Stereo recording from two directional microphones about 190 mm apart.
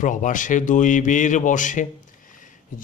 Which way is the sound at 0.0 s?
40° left (ahead or behind).